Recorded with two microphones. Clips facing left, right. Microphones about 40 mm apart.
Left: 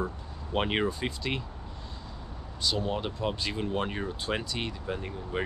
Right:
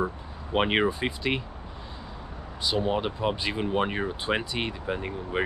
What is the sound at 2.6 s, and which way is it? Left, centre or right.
Speech, centre.